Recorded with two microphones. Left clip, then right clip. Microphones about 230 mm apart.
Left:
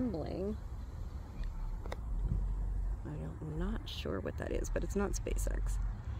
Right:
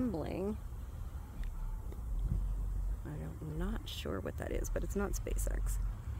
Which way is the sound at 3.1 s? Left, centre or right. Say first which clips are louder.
Left 1 dB; centre.